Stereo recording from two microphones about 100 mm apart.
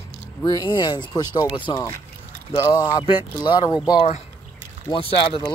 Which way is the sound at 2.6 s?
30° left (ahead or behind).